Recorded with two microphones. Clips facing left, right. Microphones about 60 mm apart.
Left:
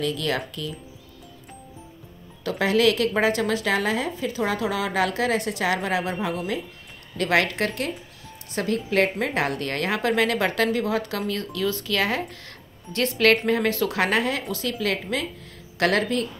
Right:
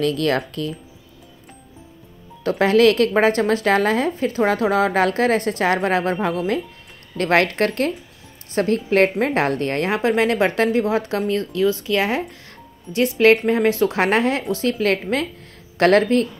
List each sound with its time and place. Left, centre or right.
0.0 s a woman's voice: right
2.4 s a woman's voice: right